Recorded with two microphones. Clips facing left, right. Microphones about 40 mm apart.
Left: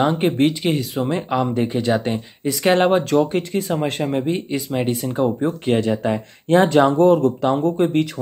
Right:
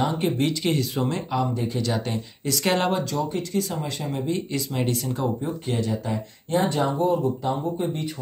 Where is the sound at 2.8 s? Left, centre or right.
Left.